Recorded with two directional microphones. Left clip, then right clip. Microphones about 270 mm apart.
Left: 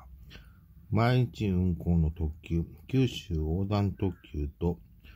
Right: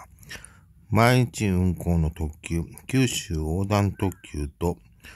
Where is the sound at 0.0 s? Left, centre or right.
Right.